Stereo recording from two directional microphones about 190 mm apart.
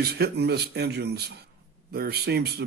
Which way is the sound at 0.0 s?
55° right (ahead or behind).